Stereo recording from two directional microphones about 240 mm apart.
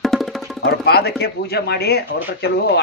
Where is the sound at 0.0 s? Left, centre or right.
Centre.